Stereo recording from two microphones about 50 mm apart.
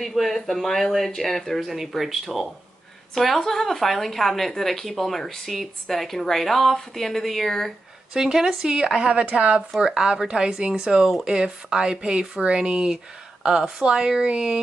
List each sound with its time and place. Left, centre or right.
0.0 s speech: centre
3.2 s speech: centre
8.1 s speech: centre
9.8 s speech: centre